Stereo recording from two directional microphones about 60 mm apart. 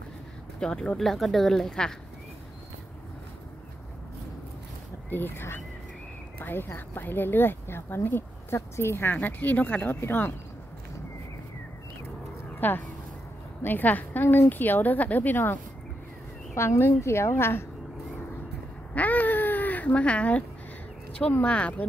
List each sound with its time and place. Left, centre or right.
0.6 s speech: centre
5.1 s speech: left
12.5 s speech: left
16.5 s a woman's voice: left
18.9 s a sound: left
21.1 s speech: left